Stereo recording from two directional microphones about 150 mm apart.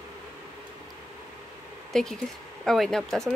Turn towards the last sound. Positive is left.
turn(degrees=0)  # may be behind; listen again after turning